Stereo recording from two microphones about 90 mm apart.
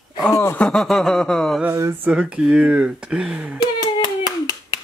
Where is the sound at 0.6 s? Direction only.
10° left (ahead or behind).